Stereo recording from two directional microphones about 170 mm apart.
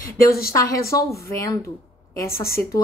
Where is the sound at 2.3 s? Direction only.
60° left (ahead or behind).